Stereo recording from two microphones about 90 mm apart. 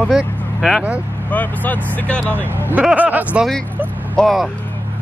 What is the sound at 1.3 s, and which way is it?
Speech, 20° left (ahead or behind).